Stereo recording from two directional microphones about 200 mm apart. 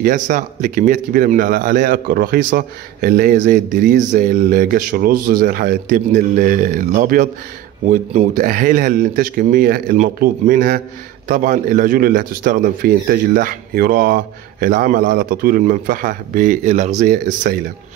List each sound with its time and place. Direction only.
0.0 s speech: 45° right (ahead or behind)